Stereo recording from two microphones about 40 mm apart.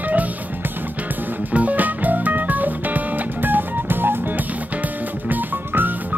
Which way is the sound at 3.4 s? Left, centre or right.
Right.